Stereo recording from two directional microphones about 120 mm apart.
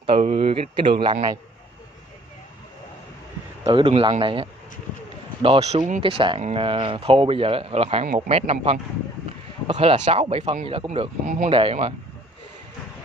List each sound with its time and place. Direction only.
0.2 s speech: 50° right (ahead or behind)
3.6 s speech: 50° right (ahead or behind)
8.0 s speech: 70° right (ahead or behind)
9.8 s speech: 65° right (ahead or behind)
10.2 s speech: 45° right (ahead or behind)
11.2 s speech: 90° right
11.5 s speech: 50° right (ahead or behind)